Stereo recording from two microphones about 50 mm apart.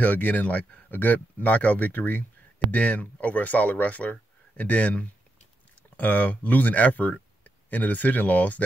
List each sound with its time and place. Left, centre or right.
0.0 s speech: left